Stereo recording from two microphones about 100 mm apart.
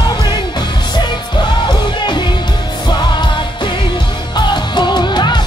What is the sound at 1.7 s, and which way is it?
Music, 50° left (ahead or behind).